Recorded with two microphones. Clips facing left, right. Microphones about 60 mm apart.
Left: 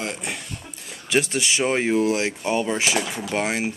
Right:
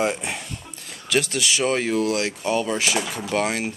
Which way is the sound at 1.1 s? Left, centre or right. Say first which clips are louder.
Even; centre.